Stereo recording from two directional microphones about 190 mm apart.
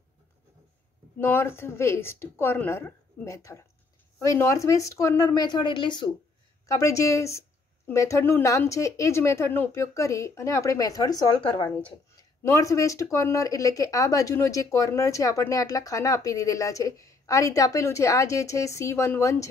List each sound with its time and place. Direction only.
1.2 s speech: 10° left (ahead or behind)